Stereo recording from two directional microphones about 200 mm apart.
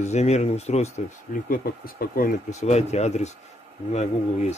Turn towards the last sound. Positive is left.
turn(degrees=35)  # may be behind; listen again after turning